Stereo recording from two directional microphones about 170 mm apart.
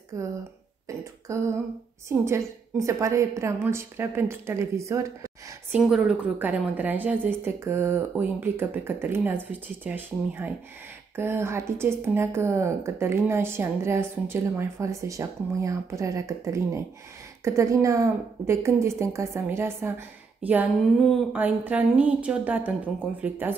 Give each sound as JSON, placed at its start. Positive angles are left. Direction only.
{"t": 0.1, "sound": "speech", "side_deg": -15}
{"t": 0.8, "sound": "a sound", "side_deg": -20}
{"t": 2.0, "sound": "speech", "side_deg": -15}
{"t": 5.8, "sound": "speech", "side_deg": -5}
{"t": 20.4, "sound": "a sound", "side_deg": -5}
{"t": 21.3, "sound": "speech", "side_deg": -10}